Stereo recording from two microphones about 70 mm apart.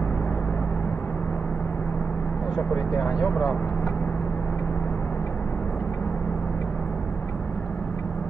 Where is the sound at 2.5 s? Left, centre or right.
Centre.